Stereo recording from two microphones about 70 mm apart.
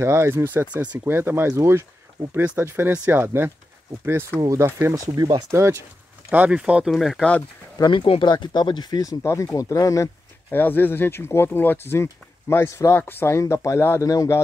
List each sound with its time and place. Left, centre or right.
0.0 s speech: right
4.9 s speech: right
5.5 s speech: right
6.5 s speech: centre
6.9 s speech: centre
7.7 s speech: left
9.2 s speech: left
10.5 s speech: left
12.9 s speech: left
13.4 s speech: left
14.0 s speech: left